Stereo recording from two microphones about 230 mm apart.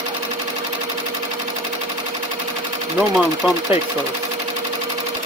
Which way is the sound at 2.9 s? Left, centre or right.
Centre.